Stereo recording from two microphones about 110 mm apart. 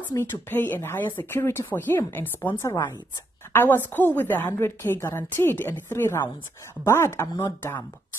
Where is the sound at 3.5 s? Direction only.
20° left (ahead or behind).